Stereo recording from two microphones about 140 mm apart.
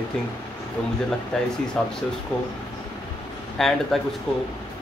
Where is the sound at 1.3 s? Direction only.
5° left (ahead or behind).